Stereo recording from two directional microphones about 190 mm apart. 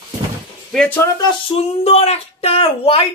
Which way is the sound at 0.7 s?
5° left (ahead or behind).